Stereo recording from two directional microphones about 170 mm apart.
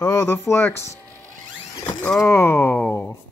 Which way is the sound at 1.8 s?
10° left (ahead or behind).